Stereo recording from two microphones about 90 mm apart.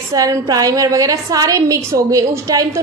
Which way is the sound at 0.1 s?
40° right (ahead or behind).